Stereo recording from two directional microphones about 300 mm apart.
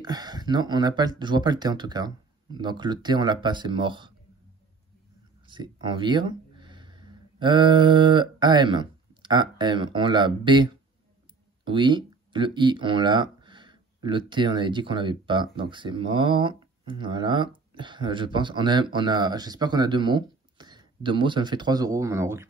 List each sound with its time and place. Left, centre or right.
0.0 s speech: centre
5.5 s speech: centre